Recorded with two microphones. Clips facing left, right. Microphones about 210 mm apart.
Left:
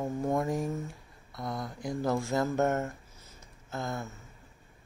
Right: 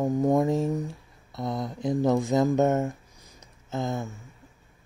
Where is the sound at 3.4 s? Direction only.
20° right (ahead or behind).